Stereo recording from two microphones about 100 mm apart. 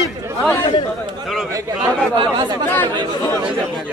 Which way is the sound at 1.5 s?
35° right (ahead or behind).